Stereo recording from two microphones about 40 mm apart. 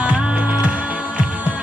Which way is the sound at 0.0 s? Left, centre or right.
Right.